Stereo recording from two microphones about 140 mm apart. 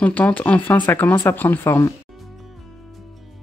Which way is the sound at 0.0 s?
10° left (ahead or behind).